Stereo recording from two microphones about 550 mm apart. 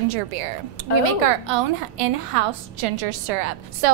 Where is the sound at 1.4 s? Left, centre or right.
Right.